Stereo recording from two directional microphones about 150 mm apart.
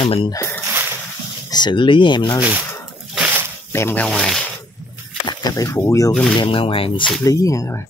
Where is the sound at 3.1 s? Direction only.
10° right (ahead or behind).